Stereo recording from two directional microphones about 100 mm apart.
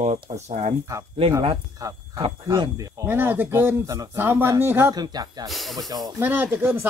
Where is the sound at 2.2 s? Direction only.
45° right (ahead or behind).